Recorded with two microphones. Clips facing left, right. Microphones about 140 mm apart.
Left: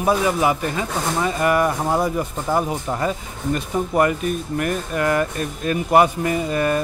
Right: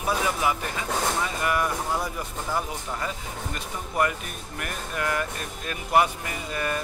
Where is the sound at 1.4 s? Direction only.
60° left (ahead or behind).